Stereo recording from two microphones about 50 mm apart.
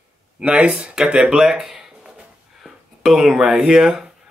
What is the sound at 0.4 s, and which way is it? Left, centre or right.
Speech, right.